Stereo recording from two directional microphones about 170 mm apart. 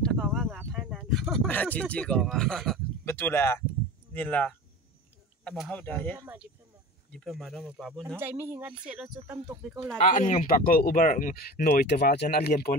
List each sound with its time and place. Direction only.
0.0 s a sound: centre (ahead or behind)
0.7 s speech: 5° right (ahead or behind)
3.1 s speech: 15° left (ahead or behind)
6.1 s speech: 10° right (ahead or behind)
7.1 s speech: centre (ahead or behind)
9.9 s speech: 50° left (ahead or behind)